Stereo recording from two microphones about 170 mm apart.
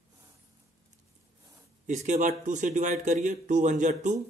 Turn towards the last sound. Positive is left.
turn(degrees=-45)  # may be behind; listen again after turning